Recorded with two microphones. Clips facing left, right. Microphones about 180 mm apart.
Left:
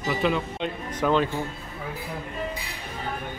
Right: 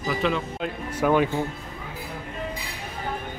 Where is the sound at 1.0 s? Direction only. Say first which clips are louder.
Right 2 dB; 10° right (ahead or behind).